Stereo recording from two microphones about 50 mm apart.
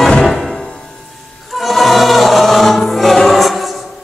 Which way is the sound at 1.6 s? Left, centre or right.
Centre.